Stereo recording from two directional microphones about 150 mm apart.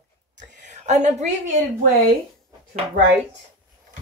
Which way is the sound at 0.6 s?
55° right (ahead or behind).